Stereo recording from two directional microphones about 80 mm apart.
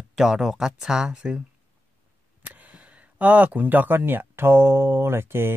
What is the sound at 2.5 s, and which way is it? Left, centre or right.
Speech, centre.